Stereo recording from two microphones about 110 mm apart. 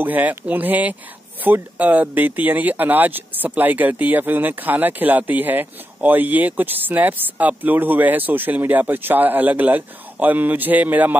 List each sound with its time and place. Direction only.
0.0 s speech: 15° right (ahead or behind)